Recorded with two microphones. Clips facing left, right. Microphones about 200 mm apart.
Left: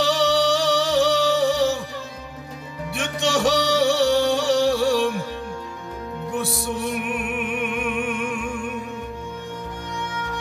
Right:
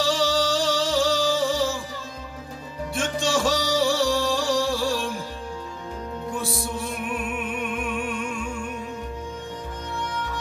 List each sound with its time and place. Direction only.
0.0 s music: 65° left (ahead or behind)
2.9 s music: 65° left (ahead or behind)
6.3 s music: 65° left (ahead or behind)